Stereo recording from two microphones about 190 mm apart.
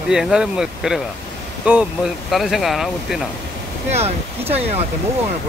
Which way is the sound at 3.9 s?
35° right (ahead or behind).